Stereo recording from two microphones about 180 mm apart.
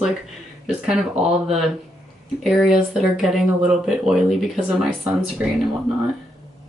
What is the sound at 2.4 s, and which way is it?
Speech, centre (ahead or behind).